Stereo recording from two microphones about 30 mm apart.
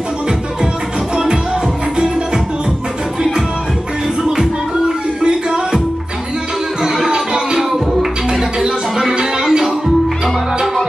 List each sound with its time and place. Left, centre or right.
4.4 s music: right
6.8 s music: centre
8.3 s music: right